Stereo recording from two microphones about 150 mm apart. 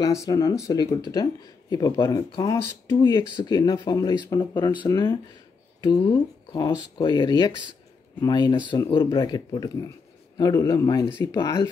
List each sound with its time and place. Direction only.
0.0 s speech: 25° left (ahead or behind)